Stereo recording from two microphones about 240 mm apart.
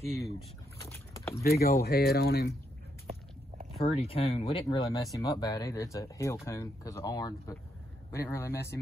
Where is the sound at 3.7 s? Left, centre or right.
Left.